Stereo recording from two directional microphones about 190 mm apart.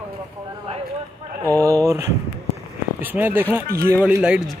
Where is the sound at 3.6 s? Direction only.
50° right (ahead or behind).